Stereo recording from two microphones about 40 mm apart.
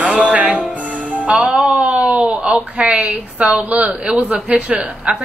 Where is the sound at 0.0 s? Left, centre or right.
Right.